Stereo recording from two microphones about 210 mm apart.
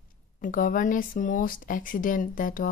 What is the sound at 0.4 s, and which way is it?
Speech, 40° left (ahead or behind).